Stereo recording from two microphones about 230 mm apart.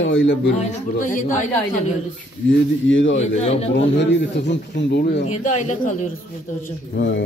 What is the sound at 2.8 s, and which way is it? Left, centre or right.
Speech, left.